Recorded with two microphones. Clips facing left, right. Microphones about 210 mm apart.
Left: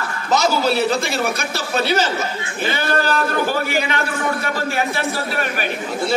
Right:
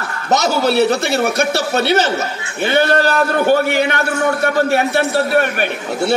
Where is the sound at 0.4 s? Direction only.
65° right (ahead or behind).